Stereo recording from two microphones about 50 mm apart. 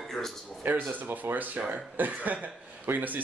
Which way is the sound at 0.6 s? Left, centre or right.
Right.